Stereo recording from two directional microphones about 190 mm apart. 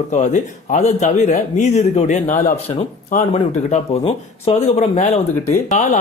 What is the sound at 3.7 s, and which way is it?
Speech, 30° left (ahead or behind).